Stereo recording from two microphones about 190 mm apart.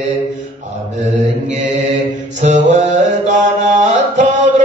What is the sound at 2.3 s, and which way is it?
Mantra, 40° right (ahead or behind).